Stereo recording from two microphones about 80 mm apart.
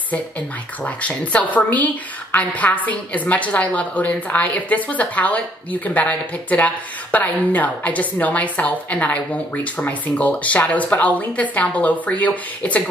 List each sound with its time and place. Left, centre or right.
0.8 s a woman's voice: centre